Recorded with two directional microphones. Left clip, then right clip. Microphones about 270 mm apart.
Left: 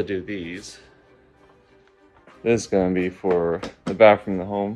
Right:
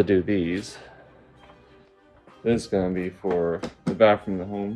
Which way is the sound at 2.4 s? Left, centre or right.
Left.